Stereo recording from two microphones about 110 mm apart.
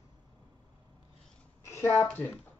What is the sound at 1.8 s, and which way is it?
Speech, 25° left (ahead or behind).